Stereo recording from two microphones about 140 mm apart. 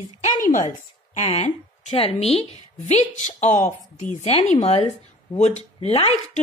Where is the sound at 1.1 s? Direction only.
55° left (ahead or behind).